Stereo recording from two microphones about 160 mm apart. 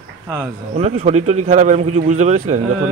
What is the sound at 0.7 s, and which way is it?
Speech, 40° right (ahead or behind).